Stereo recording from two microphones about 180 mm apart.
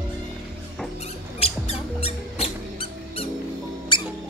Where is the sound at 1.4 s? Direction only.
35° left (ahead or behind).